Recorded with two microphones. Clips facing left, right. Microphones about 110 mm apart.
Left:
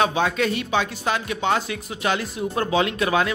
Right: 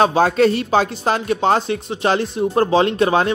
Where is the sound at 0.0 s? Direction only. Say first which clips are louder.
Right 7 dB; 35° right (ahead or behind).